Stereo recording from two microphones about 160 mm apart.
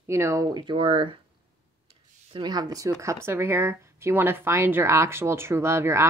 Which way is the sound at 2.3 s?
25° right (ahead or behind).